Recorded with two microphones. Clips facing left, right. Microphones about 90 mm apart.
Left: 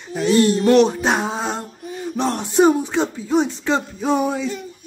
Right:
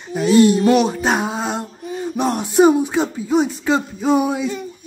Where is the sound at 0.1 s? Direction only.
10° right (ahead or behind).